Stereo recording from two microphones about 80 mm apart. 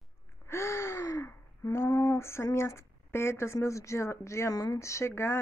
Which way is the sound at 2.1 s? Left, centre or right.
Left.